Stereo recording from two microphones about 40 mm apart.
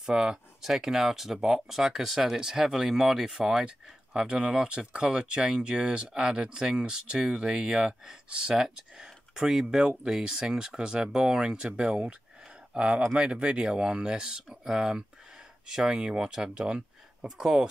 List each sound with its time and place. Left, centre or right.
0.0 s speech: right
0.6 s speech: centre
8.5 s speech: centre
16.5 s speech: right